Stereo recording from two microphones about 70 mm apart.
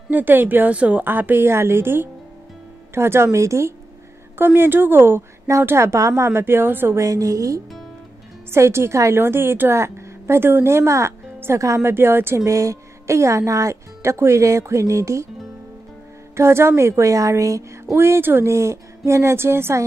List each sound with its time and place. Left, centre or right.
0.1 s a woman's voice: right
4.6 s a woman's voice: right
7.0 s speech: right
8.5 s a woman's voice: right
9.2 s speech: right
11.6 s speech: right
11.9 s a woman's voice: right
12.4 s speech: right
16.3 s speech: right
17.9 s a woman's voice: right